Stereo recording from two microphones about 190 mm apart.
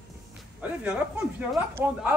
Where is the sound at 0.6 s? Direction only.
5° right (ahead or behind).